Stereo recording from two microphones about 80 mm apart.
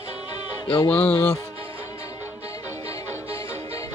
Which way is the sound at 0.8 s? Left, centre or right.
Left.